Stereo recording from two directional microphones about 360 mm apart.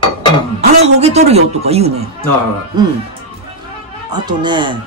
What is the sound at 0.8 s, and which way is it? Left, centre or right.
A woman's voice, centre.